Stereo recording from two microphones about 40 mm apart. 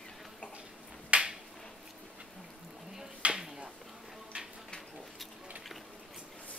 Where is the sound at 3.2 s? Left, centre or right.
Right.